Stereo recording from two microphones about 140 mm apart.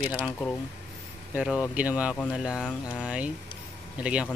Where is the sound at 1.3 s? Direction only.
10° right (ahead or behind).